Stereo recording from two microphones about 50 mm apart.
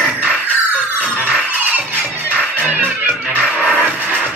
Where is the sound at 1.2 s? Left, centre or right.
Right.